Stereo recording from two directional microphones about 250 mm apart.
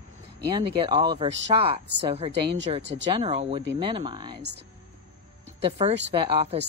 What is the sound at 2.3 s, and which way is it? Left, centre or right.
Speech, right.